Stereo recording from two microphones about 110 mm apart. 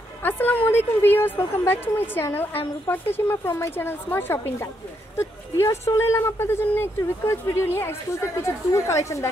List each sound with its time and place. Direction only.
0.2 s a woman's voice: 20° left (ahead or behind)